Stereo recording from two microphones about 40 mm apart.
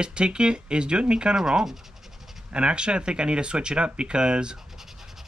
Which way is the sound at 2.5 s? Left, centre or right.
Right.